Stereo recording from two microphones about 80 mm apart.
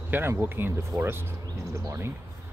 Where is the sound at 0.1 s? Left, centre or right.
Right.